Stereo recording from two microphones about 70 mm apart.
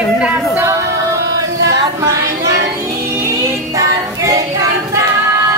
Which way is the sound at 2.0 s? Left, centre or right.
Right.